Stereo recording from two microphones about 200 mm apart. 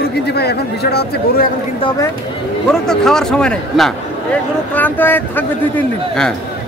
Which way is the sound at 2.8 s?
5° left (ahead or behind).